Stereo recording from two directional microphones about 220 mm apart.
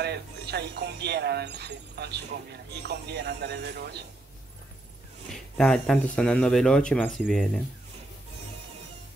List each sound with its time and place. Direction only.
0.0 s speech: 50° right (ahead or behind)
5.3 s speech: centre (ahead or behind)